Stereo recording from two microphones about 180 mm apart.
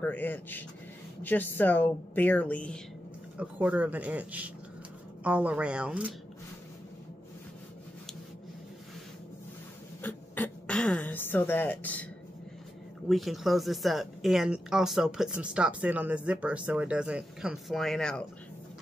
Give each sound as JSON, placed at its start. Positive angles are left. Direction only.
{"t": 0.0, "sound": "a woman's voice", "side_deg": 10}
{"t": 3.3, "sound": "speech", "side_deg": -10}
{"t": 10.0, "sound": "speech", "side_deg": 10}
{"t": 13.1, "sound": "speech", "side_deg": 0}